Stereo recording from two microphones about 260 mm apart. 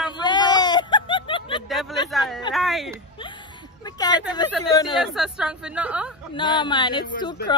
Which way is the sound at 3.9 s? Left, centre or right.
Centre.